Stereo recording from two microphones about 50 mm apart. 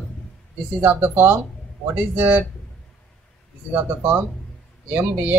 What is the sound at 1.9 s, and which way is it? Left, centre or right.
Speech, right.